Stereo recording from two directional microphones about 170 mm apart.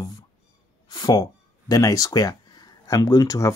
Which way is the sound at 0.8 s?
25° left (ahead or behind).